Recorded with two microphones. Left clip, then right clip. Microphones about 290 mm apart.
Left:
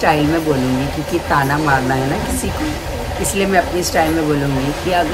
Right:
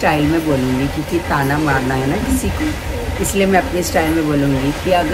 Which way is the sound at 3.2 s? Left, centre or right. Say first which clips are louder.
Right 1 dB; centre.